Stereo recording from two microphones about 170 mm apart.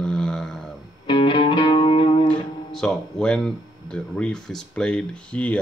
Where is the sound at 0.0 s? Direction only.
5° left (ahead or behind).